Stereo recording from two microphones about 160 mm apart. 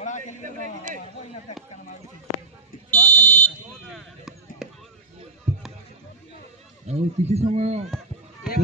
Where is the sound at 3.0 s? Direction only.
15° left (ahead or behind).